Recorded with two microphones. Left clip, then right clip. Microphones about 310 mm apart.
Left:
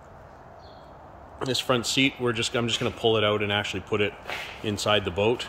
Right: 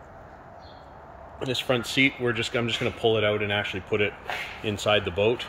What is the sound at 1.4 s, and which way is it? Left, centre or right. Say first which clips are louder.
Speech: left 1 dB; centre.